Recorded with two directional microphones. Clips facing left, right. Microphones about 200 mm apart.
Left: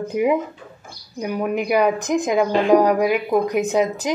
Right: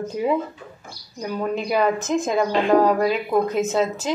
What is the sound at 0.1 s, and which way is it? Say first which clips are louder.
A woman's voice: left 4 dB; 15° left (ahead or behind).